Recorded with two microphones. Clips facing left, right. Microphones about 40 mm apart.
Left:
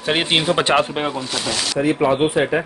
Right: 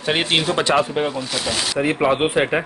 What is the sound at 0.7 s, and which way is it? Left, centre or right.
Speech, left.